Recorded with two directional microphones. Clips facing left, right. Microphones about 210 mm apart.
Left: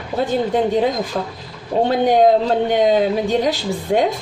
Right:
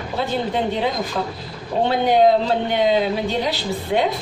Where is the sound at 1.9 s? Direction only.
45° left (ahead or behind).